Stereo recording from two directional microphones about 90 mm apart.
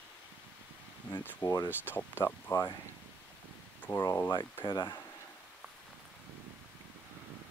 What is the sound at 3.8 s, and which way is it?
Speech, 25° left (ahead or behind).